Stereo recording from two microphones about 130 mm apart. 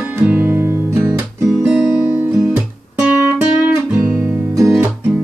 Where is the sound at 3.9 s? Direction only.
10° right (ahead or behind).